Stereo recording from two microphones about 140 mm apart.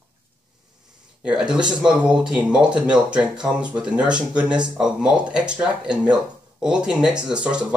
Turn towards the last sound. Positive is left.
turn(degrees=-5)  # may be behind; listen again after turning